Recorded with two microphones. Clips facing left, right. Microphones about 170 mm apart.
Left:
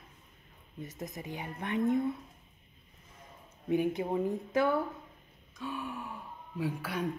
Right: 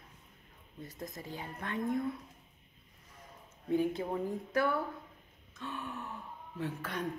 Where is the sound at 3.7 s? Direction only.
15° left (ahead or behind).